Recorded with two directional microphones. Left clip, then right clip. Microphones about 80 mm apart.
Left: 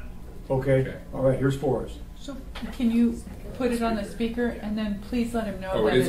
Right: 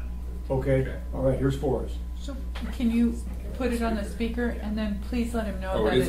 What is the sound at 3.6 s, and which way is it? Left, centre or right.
Speech, centre.